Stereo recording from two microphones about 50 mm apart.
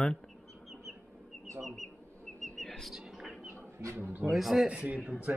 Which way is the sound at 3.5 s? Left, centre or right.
Right.